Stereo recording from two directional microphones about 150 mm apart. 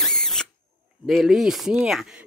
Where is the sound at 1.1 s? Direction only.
Centre (ahead or behind).